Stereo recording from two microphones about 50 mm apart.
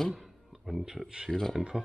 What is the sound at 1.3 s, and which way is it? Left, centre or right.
Speech, centre.